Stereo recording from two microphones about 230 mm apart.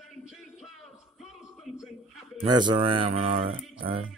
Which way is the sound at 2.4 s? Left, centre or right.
Centre.